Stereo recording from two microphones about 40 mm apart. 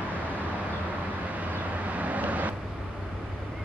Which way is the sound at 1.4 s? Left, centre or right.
Right.